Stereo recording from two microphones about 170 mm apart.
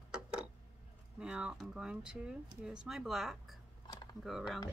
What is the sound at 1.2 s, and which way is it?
Speech, 5° right (ahead or behind).